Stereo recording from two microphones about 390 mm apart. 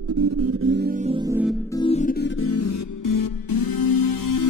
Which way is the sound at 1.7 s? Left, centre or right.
Centre.